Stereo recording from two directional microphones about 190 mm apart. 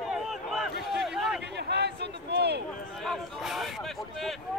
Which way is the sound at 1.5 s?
60° right (ahead or behind).